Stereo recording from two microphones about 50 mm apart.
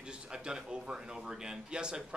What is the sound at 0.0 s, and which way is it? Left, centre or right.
Speech, centre.